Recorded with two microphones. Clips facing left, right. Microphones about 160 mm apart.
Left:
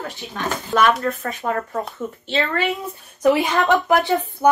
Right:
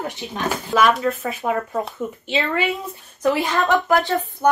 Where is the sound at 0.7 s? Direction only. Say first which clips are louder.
Even; centre (ahead or behind).